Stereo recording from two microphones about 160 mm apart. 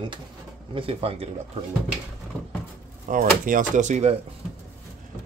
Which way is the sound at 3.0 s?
55° right (ahead or behind).